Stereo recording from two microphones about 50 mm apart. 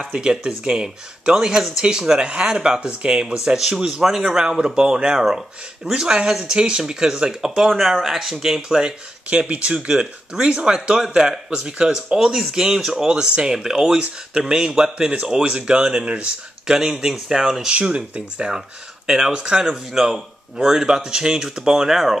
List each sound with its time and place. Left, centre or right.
0.1 s speech: centre
3.4 s speech: centre
9.5 s speech: right; by 17.6 s centre
17.6 s speech: right
19.0 s speech: centre